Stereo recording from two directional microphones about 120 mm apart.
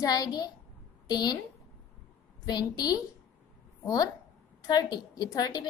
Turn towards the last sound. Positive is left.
turn(degrees=35)  # may be behind; listen again after turning